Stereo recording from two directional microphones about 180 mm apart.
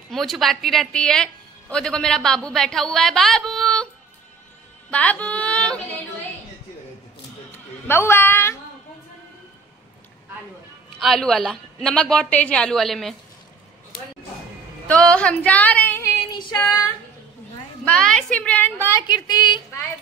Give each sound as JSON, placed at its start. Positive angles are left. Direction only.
{"t": 0.1, "sound": "a woman's voice", "side_deg": 0}
{"t": 4.9, "sound": "a sound", "side_deg": 10}
{"t": 7.9, "sound": "a woman's voice", "side_deg": 15}
{"t": 11.0, "sound": "a woman's voice", "side_deg": 0}
{"t": 14.9, "sound": "female singing", "side_deg": 5}
{"t": 16.3, "sound": "female singing", "side_deg": 25}
{"t": 17.8, "sound": "a woman's voice", "side_deg": 5}
{"t": 19.0, "sound": "speech", "side_deg": 25}